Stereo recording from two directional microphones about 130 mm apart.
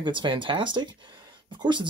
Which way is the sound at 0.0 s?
35° right (ahead or behind).